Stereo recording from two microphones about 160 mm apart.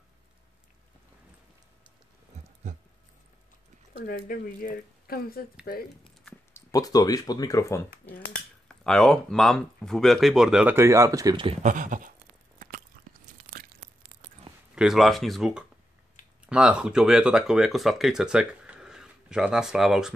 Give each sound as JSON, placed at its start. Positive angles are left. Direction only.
{"t": 2.3, "sound": "a sound", "side_deg": -45}
{"t": 4.0, "sound": "speech", "side_deg": 65}
{"t": 6.5, "sound": "speech", "side_deg": 20}
{"t": 8.6, "sound": "speech", "side_deg": 5}
{"t": 11.6, "sound": "a sound", "side_deg": -55}
{"t": 13.0, "sound": "crunch", "side_deg": -65}
{"t": 14.8, "sound": "speech", "side_deg": 0}